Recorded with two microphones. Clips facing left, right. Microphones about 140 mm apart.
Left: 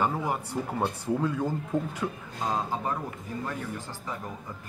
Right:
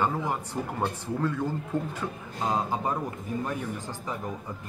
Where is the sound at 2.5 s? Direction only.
15° right (ahead or behind).